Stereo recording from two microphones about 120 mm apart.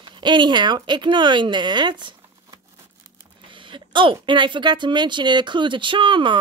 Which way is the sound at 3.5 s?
45° right (ahead or behind).